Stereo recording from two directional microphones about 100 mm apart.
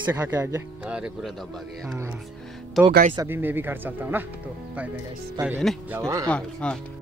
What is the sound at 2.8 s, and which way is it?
Speech, 10° right (ahead or behind).